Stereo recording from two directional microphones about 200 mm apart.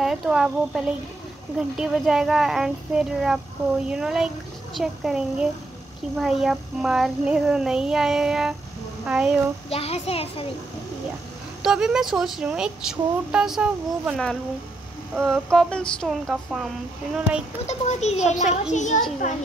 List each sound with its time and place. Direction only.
0.0 s speech: centre (ahead or behind)
9.7 s a child's voice: 30° left (ahead or behind)
11.6 s speech: 5° right (ahead or behind)
15.5 s speech: 5° left (ahead or behind)
17.6 s a child's voice: 35° left (ahead or behind)